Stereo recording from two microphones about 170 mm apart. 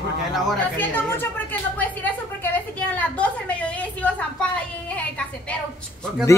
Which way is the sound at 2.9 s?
10° left (ahead or behind).